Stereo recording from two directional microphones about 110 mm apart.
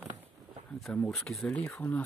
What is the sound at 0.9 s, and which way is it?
Speech, 5° left (ahead or behind).